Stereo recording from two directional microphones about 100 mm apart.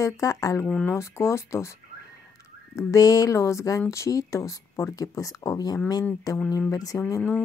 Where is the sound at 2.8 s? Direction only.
35° left (ahead or behind).